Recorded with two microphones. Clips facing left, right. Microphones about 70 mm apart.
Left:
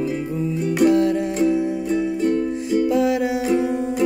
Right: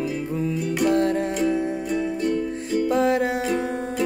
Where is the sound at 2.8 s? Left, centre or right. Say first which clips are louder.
Even; right.